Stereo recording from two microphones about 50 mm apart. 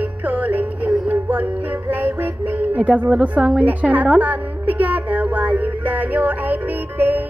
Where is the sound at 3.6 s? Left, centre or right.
Right.